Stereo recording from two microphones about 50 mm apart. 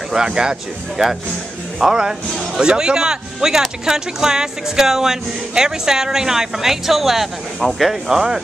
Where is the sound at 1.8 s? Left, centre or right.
Centre.